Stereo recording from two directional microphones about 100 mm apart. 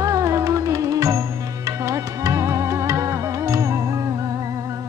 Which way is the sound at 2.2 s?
30° right (ahead or behind).